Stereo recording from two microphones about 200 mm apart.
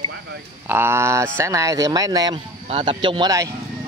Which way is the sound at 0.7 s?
10° right (ahead or behind).